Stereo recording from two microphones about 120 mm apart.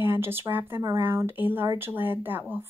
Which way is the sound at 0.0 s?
20° right (ahead or behind).